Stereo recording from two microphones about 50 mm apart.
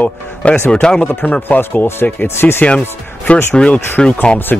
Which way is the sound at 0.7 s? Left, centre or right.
Centre.